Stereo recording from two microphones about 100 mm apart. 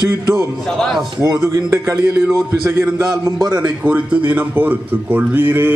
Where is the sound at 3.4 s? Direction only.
45° right (ahead or behind).